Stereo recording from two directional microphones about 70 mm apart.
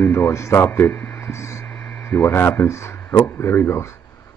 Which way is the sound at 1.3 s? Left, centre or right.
Left.